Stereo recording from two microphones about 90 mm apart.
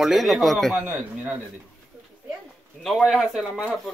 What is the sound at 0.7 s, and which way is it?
Speech, 15° right (ahead or behind).